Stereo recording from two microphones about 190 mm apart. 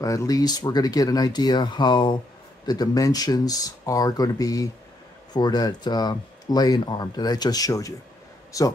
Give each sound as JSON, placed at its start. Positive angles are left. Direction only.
{"t": 0.0, "sound": "speech", "side_deg": 15}